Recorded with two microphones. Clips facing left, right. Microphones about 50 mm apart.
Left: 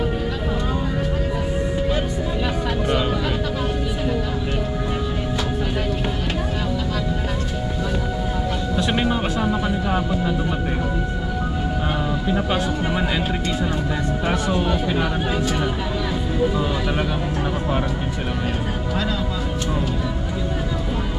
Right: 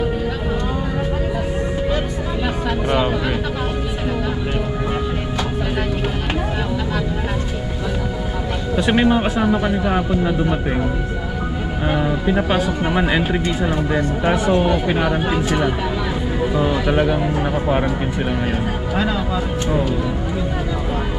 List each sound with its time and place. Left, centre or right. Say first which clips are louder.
8.7 s speech: right 7 dB; centre
11.9 s speech: right 7 dB; centre
16.5 s speech: right 5 dB; right